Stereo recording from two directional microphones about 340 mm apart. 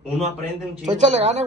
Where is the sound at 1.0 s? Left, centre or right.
Centre.